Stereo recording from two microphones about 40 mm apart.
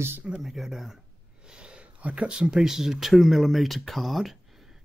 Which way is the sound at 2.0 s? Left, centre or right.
Right.